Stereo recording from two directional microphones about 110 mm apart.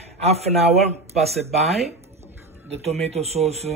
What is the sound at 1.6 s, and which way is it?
Speech, 75° right (ahead or behind).